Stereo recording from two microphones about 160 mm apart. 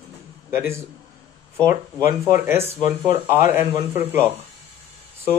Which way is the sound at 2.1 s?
15° right (ahead or behind).